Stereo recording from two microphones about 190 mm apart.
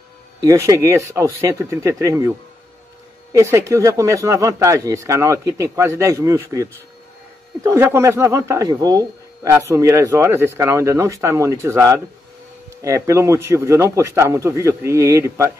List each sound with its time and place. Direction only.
0.4 s speech: 15° right (ahead or behind)
3.3 s speech: 15° right (ahead or behind)